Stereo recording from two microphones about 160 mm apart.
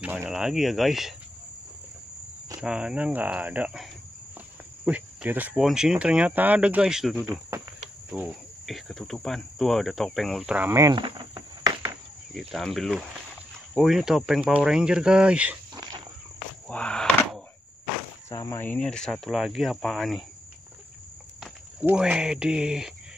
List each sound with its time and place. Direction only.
0.0 s speech: 10° right (ahead or behind)
2.6 s speech: 5° right (ahead or behind)
11.0 s insect: 30° right (ahead or behind)
12.4 s speech: centre (ahead or behind)
15.7 s walk: 25° right (ahead or behind)
16.6 s a sound: 5° left (ahead or behind)
18.3 s speech: 20° left (ahead or behind); by 20.2 s centre (ahead or behind)
21.4 s speech: 5° right (ahead or behind)